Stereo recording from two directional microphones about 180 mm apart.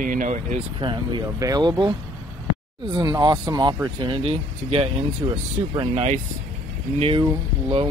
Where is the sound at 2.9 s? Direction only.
25° right (ahead or behind).